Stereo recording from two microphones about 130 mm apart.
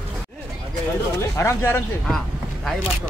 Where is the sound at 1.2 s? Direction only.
20° left (ahead or behind).